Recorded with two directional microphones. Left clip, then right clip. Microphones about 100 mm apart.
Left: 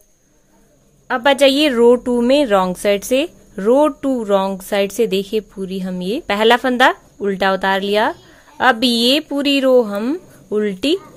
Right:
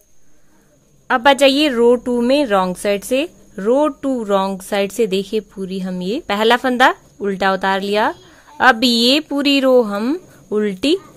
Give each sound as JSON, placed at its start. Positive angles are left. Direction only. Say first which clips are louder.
{"t": 1.0, "sound": "speech", "louder": "right 1 dB", "side_deg": -20}
{"t": 1.7, "sound": "speech", "louder": "left 1 dB", "side_deg": 0}